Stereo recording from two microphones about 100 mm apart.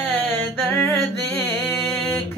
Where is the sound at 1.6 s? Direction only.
Centre (ahead or behind).